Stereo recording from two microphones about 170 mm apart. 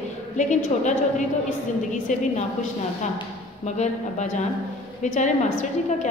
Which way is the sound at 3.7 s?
45° left (ahead or behind).